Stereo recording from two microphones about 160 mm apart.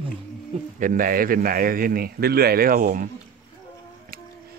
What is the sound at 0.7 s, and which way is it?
Speech, 55° right (ahead or behind).